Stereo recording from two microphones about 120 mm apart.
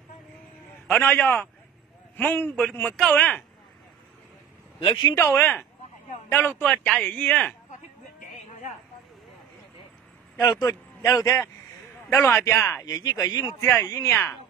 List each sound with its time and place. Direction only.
0.8 s a man's voice: 15° left (ahead or behind)
4.7 s speech: 45° left (ahead or behind)
5.1 s a man's voice: 20° left (ahead or behind)
10.7 s a man's voice: 30° left (ahead or behind)